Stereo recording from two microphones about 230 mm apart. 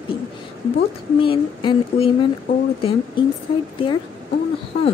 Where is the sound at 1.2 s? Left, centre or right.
Left.